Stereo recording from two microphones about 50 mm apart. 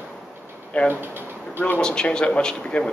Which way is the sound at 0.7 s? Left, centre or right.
Left.